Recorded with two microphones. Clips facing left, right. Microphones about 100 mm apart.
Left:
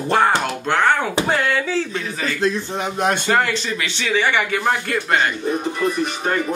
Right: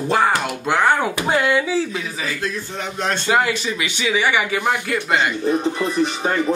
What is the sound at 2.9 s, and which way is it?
Speech, 15° left (ahead or behind).